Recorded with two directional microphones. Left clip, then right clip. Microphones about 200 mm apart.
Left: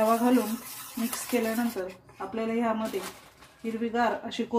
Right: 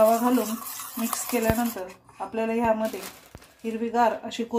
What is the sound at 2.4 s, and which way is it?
Speech, 25° right (ahead or behind).